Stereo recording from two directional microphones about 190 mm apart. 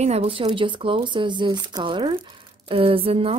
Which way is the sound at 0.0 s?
35° right (ahead or behind).